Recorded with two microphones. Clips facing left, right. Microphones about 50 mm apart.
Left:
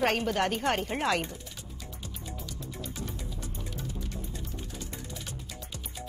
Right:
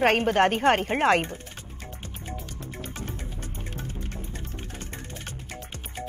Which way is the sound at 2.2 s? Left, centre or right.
Right.